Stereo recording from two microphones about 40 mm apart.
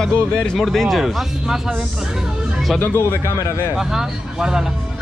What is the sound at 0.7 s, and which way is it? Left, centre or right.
Speech, centre.